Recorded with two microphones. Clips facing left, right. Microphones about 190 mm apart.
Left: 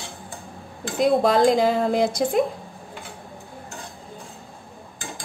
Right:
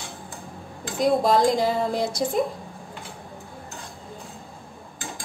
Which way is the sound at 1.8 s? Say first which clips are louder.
Left 4 dB; 60° left (ahead or behind).